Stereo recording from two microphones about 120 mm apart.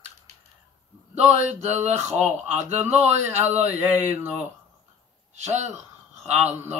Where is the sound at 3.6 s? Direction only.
15° right (ahead or behind).